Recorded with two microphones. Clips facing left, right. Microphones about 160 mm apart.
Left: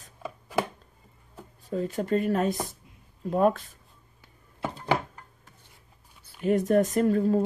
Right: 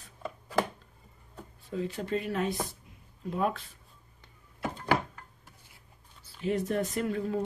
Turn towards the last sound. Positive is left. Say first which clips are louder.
# left 8 dB
turn(degrees=40)  # may be behind; listen again after turning